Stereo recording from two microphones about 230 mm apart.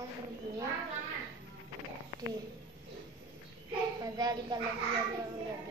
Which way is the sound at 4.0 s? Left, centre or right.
Centre.